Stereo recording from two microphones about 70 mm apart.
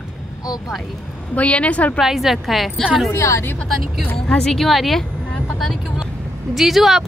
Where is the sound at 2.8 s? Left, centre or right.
Centre.